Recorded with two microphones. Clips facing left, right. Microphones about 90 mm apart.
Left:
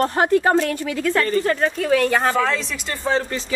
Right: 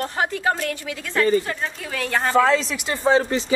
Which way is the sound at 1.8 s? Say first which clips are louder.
Left 6 dB; centre (ahead or behind).